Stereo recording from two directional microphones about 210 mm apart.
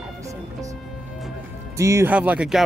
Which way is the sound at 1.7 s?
15° right (ahead or behind).